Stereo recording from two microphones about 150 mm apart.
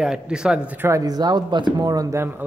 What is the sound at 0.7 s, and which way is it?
Speech, 15° right (ahead or behind).